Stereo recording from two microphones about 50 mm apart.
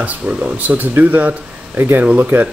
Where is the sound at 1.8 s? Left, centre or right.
Right.